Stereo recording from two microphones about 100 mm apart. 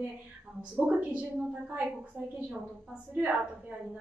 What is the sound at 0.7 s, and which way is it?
A woman's voice, 15° right (ahead or behind).